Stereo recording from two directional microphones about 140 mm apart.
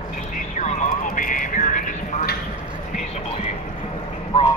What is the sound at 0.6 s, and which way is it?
Music, 70° left (ahead or behind).